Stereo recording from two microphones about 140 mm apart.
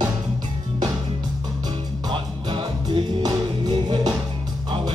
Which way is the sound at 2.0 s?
35° right (ahead or behind).